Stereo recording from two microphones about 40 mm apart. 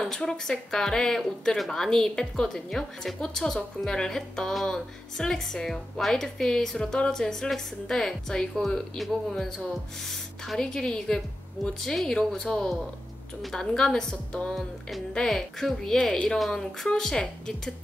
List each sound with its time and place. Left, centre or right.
0.0 s a woman's voice: centre
10.0 s speech: centre
10.6 s a woman's voice: centre
13.6 s a woman's voice: centre
14.5 s music: centre
15.1 s a woman's voice: centre
16.0 s speech: left
16.3 s a woman's voice: centre